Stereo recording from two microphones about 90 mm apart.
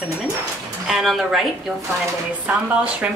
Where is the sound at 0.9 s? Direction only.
Centre (ahead or behind).